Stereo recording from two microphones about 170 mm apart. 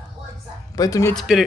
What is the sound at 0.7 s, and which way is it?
Speech, 20° left (ahead or behind).